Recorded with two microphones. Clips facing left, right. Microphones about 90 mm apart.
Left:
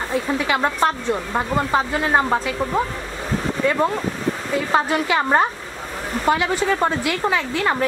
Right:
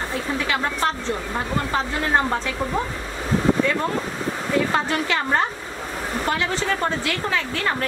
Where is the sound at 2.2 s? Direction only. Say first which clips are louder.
Left 3 dB; 15° left (ahead or behind).